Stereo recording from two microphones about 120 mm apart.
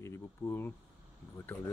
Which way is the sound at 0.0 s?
20° left (ahead or behind).